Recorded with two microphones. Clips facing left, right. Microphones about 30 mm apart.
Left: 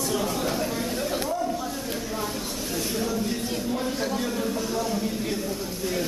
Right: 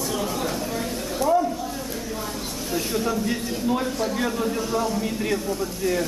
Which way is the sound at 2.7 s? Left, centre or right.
Centre.